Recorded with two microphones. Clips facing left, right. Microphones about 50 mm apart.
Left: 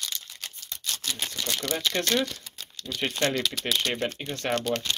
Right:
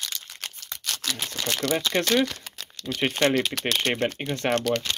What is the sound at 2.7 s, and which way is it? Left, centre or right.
Speech, right.